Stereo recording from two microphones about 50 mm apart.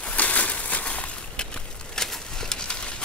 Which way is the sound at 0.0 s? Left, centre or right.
Left.